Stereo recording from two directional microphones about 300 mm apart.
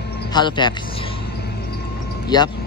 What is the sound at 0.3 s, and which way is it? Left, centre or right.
Speech, centre.